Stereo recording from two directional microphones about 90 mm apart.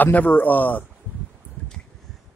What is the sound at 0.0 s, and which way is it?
Speech, 20° left (ahead or behind).